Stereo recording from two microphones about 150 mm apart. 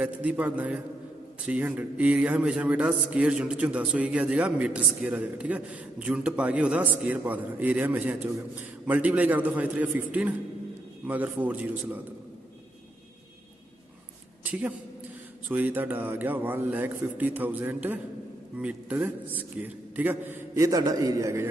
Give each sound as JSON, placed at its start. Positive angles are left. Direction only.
{"t": 0.0, "sound": "a man's voice", "side_deg": -10}
{"t": 14.4, "sound": "a sound", "side_deg": -10}
{"t": 15.4, "sound": "a man's voice", "side_deg": -10}